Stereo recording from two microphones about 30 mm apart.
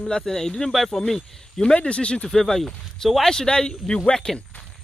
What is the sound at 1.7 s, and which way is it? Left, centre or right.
Speech, left.